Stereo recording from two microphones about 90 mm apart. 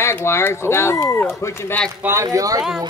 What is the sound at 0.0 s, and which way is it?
Speech, 30° left (ahead or behind).